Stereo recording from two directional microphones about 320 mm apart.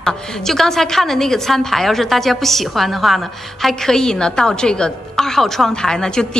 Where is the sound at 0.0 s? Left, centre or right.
Centre.